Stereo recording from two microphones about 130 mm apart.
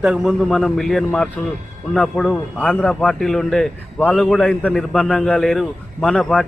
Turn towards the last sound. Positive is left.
turn(degrees=5)  # may be behind; listen again after turning